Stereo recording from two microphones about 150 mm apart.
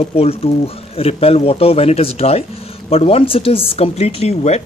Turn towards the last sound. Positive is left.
turn(degrees=45)  # may be behind; listen again after turning